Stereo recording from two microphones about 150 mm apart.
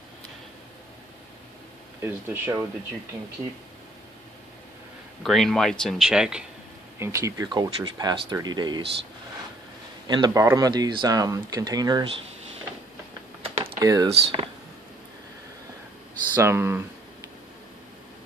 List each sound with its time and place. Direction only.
2.0 s speech: 15° right (ahead or behind)
5.2 s speech: centre (ahead or behind)
7.0 s speech: 20° right (ahead or behind)
10.0 s speech: 30° right (ahead or behind)
13.7 s speech: 25° right (ahead or behind)
14.1 s speech: 40° right (ahead or behind)
16.3 s speech: 15° right (ahead or behind)